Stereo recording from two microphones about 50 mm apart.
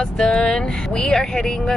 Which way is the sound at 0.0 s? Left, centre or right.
Centre.